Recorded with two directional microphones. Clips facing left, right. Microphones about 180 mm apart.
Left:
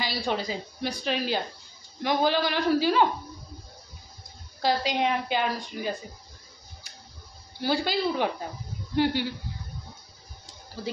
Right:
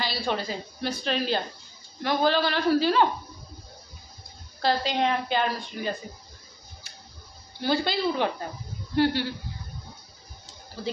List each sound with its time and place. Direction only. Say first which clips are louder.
0.0 s a woman's voice: even; 15° left (ahead or behind)
4.6 s a woman's voice: right 1 dB; 15° left (ahead or behind)
7.6 s a woman's voice: right 1 dB; 10° left (ahead or behind)
8.9 s a sound: right 1 dB; 15° left (ahead or behind)